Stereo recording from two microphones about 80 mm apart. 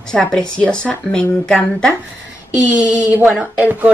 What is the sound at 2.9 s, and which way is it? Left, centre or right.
Speech, centre.